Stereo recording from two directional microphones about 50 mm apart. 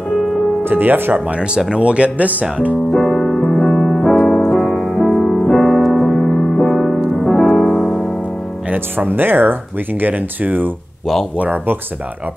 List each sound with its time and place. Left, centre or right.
0.7 s speech: right
1.1 s speech: right
2.9 s music: centre
4.6 s music: centre
6.2 s music: centre
7.3 s music: centre
8.6 s speech: right